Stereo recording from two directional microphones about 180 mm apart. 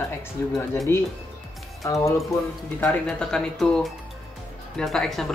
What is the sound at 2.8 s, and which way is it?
Speech, 5° left (ahead or behind).